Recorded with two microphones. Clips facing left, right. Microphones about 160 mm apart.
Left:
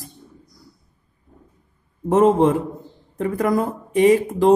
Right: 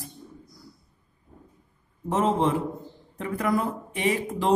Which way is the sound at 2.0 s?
50° left (ahead or behind).